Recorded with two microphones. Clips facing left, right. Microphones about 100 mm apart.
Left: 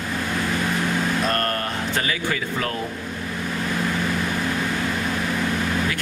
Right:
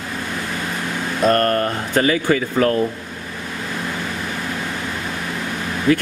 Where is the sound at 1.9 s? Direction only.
45° right (ahead or behind).